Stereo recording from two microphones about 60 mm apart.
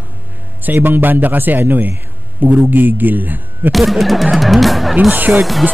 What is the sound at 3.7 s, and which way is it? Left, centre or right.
Speech, centre.